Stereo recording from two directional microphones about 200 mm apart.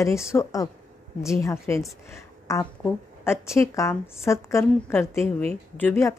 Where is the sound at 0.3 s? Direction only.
15° left (ahead or behind).